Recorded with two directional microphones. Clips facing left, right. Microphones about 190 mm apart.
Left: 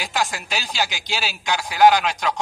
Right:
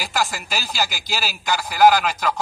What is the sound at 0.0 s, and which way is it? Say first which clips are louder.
A man's voice: even; centre (ahead or behind).